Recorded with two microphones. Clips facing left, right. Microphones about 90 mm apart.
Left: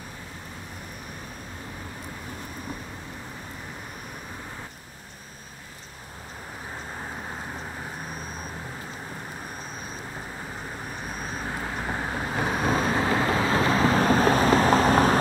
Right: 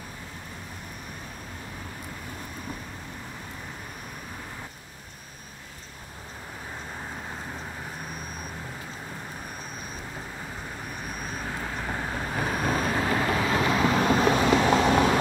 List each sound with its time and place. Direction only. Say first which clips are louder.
11.1 s vehicle: left 2 dB; 35° left (ahead or behind)